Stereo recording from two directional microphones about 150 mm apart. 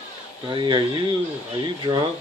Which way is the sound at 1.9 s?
30° right (ahead or behind).